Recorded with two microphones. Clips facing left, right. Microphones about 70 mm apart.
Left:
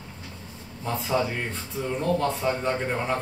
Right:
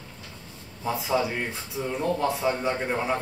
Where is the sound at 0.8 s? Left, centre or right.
Centre.